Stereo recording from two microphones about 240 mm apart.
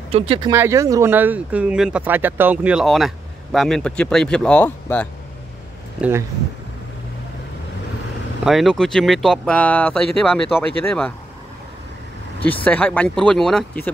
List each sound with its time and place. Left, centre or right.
0.1 s speech: right
0.5 s speech: centre
5.9 s speech: centre
8.5 s speech: centre
12.6 s speech: centre